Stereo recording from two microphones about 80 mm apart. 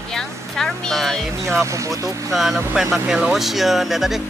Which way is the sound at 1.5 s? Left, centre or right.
Right.